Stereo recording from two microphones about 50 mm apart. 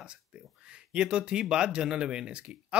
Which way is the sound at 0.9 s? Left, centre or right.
Centre.